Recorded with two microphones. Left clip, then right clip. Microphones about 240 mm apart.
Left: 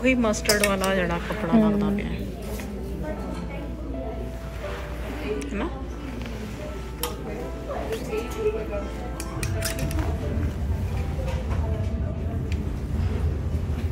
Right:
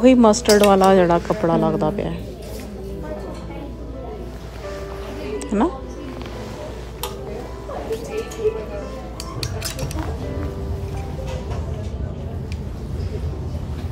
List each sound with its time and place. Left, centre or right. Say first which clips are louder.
0.0 s speech: right 9 dB; right
5.5 s speech: right 11 dB; centre